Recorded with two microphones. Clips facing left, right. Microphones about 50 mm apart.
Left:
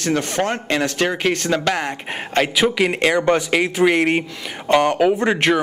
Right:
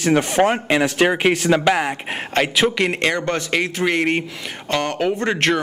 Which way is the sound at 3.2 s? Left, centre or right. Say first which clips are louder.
Left 4 dB; centre.